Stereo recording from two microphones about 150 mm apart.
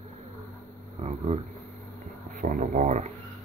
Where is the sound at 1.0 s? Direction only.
45° right (ahead or behind).